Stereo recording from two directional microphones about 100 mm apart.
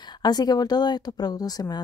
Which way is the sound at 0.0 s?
45° left (ahead or behind).